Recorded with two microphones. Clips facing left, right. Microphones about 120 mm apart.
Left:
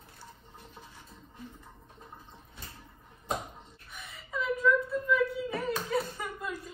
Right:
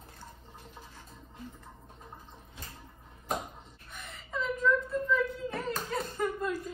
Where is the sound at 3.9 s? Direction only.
Centre (ahead or behind).